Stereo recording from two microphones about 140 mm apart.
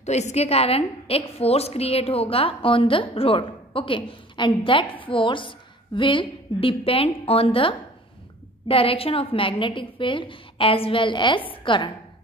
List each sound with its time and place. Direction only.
0.0 s a woman's voice: 55° left (ahead or behind); by 11.9 s 35° left (ahead or behind)